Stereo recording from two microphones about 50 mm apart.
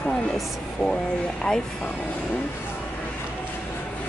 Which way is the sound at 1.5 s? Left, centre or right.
Centre.